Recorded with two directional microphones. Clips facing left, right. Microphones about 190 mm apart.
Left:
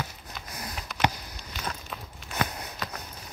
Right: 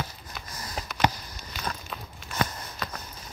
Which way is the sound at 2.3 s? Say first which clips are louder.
Right 1 dB; 65° left (ahead or behind).